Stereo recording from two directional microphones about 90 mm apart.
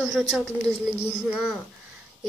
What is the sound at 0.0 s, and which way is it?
Speech, 5° right (ahead or behind).